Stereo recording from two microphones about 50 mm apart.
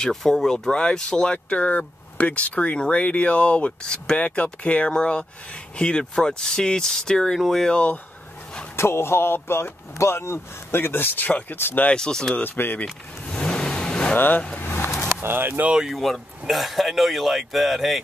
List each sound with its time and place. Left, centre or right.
0.1 s speech: centre
0.7 s speech: centre
4.2 s speech: left; by 7.3 s centre
7.3 s speech: centre
7.6 s speech: left
8.7 s speech: left
11.2 s speech: left
11.5 s speech: left
11.9 s speech: centre
12.4 s speech: left
12.8 s car: centre
14.1 s speech: left
14.6 s vehicle: left
15.9 s speech: centre